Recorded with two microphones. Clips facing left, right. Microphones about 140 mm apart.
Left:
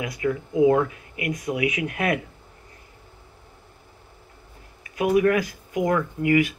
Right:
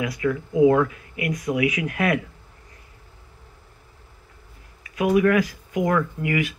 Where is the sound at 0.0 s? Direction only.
25° left (ahead or behind).